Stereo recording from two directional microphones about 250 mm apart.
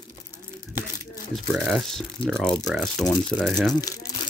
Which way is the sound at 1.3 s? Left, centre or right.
Centre.